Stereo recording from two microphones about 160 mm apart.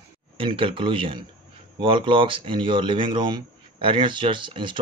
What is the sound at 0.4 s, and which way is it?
Speech, 30° right (ahead or behind).